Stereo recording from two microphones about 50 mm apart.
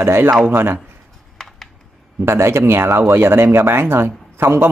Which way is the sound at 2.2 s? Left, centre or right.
Right.